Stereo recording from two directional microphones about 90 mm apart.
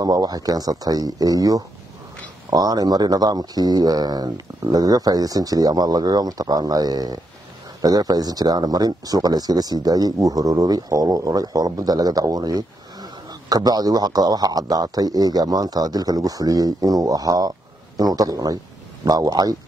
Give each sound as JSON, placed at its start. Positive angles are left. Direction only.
{"t": 0.0, "sound": "a man's voice", "side_deg": -45}